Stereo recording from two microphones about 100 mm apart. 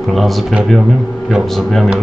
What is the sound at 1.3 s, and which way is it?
Speech, centre (ahead or behind).